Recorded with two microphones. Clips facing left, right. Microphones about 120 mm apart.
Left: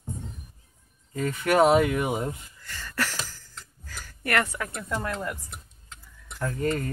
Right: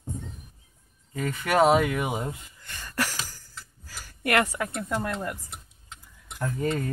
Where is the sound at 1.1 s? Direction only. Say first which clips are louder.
Left 2 dB; centre (ahead or behind).